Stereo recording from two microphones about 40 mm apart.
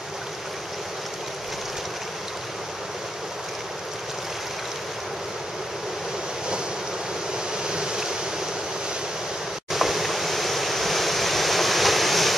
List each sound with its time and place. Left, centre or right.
7.6 s waves: centre
9.7 s waves: centre